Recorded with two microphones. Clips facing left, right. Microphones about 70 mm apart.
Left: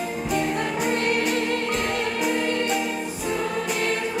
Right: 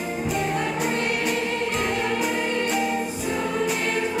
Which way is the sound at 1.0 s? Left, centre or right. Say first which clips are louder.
Left 2 dB; left.